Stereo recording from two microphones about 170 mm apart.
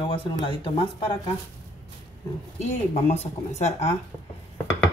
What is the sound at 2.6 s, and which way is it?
Speech, 40° left (ahead or behind).